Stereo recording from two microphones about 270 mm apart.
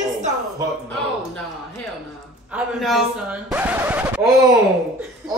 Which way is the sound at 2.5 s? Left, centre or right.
Centre.